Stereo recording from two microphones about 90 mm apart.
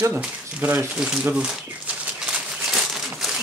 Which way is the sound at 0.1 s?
20° right (ahead or behind).